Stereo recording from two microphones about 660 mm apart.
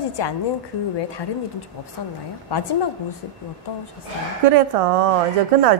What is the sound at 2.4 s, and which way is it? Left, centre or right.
Speech, left.